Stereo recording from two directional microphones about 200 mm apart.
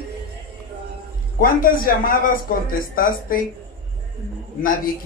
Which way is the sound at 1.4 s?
45° left (ahead or behind).